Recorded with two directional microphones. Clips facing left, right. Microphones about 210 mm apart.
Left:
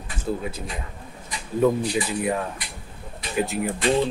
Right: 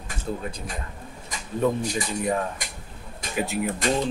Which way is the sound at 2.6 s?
45° right (ahead or behind).